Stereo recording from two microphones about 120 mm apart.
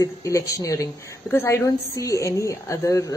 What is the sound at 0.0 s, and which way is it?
Speech, 30° left (ahead or behind).